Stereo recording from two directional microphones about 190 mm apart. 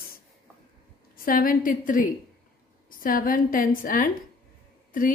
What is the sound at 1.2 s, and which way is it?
A woman's voice, 50° left (ahead or behind).